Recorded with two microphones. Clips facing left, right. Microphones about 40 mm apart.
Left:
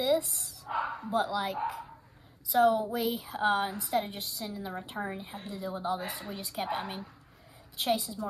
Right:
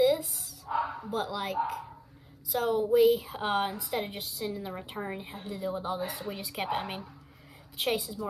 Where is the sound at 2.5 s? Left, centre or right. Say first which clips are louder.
Left 4 dB; centre.